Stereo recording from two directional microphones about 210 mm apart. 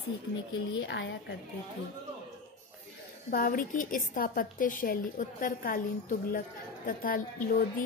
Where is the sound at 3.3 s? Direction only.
40° left (ahead or behind).